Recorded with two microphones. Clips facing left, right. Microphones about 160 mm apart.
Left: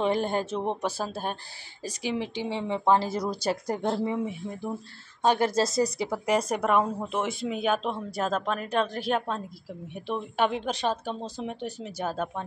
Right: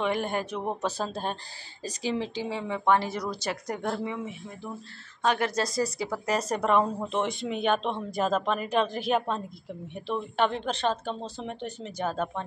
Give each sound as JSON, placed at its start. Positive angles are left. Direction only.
{"t": 0.0, "sound": "speech", "side_deg": 30}
{"t": 0.8, "sound": "speech", "side_deg": 10}
{"t": 5.2, "sound": "speech", "side_deg": 30}
{"t": 9.9, "sound": "speech", "side_deg": 10}